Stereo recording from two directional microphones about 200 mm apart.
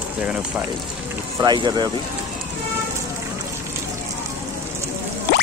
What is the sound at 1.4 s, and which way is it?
Speech, 20° right (ahead or behind).